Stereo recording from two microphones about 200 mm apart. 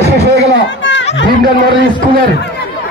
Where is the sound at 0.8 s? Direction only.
65° left (ahead or behind).